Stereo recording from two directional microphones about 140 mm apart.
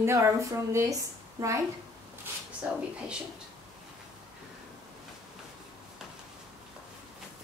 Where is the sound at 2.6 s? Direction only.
10° right (ahead or behind).